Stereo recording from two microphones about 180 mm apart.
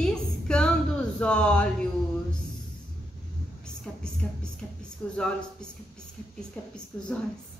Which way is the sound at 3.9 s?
10° left (ahead or behind).